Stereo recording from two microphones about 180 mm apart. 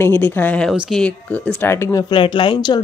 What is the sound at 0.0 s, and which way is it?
Speech, 10° left (ahead or behind).